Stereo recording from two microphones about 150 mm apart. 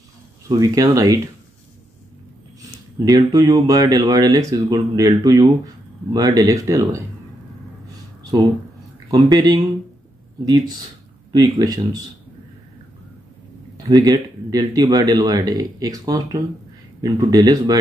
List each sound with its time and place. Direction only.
0.5 s speech: 25° right (ahead or behind)
3.1 s speech: 25° right (ahead or behind)
9.1 s speech: 30° right (ahead or behind)
13.8 s speech: 25° right (ahead or behind)